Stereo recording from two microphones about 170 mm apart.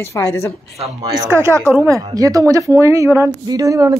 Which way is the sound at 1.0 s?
20° right (ahead or behind).